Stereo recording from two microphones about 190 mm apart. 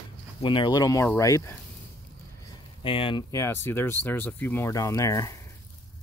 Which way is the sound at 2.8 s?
25° left (ahead or behind).